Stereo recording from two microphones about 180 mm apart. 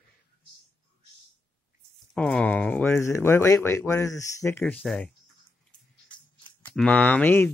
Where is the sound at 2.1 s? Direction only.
5° left (ahead or behind).